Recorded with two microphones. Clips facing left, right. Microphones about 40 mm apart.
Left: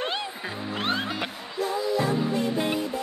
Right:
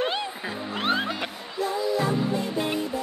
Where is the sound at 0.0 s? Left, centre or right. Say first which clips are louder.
Right 2 dB; centre.